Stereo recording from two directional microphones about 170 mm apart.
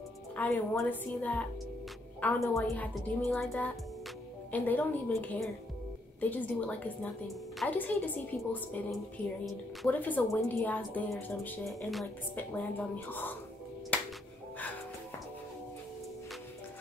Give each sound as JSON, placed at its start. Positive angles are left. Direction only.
{"t": 0.4, "sound": "a woman's voice", "side_deg": 5}
{"t": 2.7, "sound": "a woman's voice", "side_deg": 5}
{"t": 9.8, "sound": "a woman's voice", "side_deg": 10}
{"t": 13.9, "sound": "music", "side_deg": 10}